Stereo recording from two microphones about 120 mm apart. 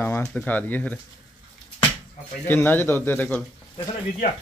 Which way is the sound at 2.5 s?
15° left (ahead or behind).